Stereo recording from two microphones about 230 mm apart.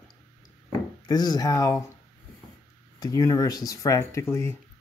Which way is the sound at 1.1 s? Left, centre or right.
Centre.